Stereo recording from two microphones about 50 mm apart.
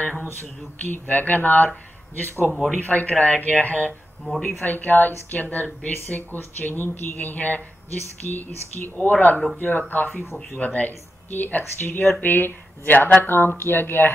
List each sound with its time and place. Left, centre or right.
0.0 s speech: left
2.5 s speech: centre
2.8 s speech: left